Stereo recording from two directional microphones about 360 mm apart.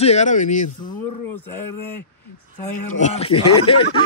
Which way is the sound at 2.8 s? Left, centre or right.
Centre.